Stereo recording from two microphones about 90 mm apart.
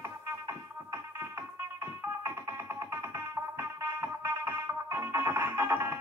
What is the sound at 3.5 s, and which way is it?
Music, 30° right (ahead or behind).